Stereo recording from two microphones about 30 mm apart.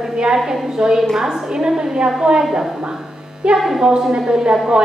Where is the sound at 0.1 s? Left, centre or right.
Right.